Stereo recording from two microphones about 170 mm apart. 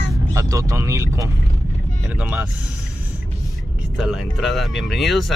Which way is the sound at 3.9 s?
5° right (ahead or behind).